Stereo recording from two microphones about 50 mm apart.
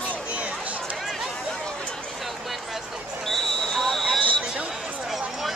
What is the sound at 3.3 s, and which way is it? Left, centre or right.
Basketball bounce, centre.